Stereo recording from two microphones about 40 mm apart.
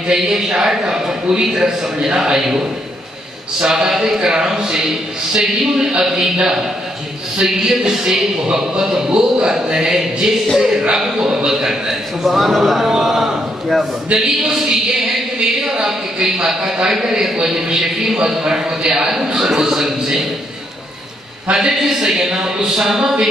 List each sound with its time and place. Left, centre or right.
0.1 s speech: centre
21.5 s speech: centre